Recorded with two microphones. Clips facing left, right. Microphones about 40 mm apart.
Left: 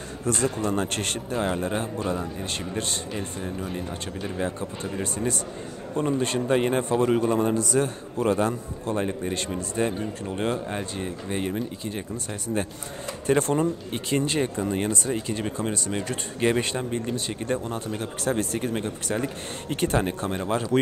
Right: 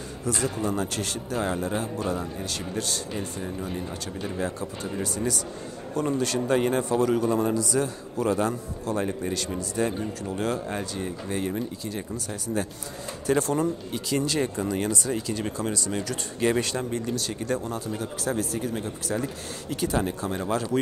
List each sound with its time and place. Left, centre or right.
0.2 s speech: left
1.3 s a man's voice: left
3.4 s speech: centre
4.4 s speech: left
5.0 s a man's voice: left
17.6 s speech: left
20.3 s speech: left